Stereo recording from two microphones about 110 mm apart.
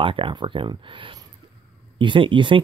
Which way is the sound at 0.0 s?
50° right (ahead or behind).